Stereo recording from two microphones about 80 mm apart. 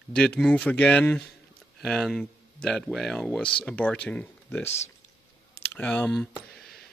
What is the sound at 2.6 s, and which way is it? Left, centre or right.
Speech, centre.